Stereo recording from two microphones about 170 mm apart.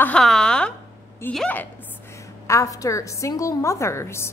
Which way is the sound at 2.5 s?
20° left (ahead or behind).